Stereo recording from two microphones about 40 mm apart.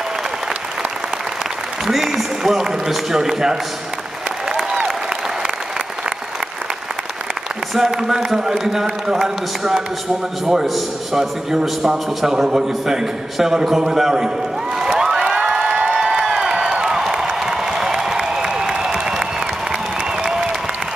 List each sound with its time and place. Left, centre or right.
1.9 s a man's voice: centre
7.7 s a man's voice: centre
10.7 s a man's voice: centre
11.8 s a man's voice: centre
14.8 s crowd: centre
16.8 s a sound: centre
20.2 s applause: centre